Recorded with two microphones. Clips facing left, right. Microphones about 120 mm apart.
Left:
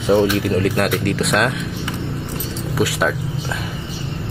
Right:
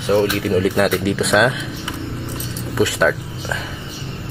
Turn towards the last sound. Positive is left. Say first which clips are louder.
# right 2 dB
turn(degrees=5)  # may be behind; listen again after turning